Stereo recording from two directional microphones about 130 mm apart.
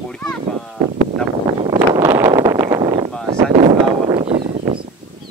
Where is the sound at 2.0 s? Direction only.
25° right (ahead or behind).